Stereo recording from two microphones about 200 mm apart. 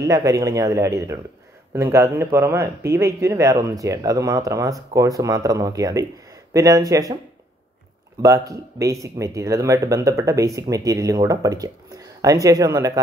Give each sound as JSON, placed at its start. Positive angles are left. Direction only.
{"t": 0.0, "sound": "speech", "side_deg": -15}
{"t": 8.2, "sound": "speech", "side_deg": -15}